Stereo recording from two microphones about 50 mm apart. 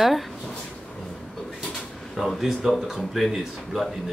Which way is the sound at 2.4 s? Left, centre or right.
Centre.